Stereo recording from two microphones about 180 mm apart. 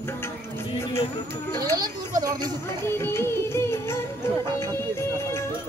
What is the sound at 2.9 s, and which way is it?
Music, 15° left (ahead or behind).